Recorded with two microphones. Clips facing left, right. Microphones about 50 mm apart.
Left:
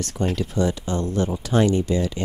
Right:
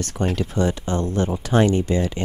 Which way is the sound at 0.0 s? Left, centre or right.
Right.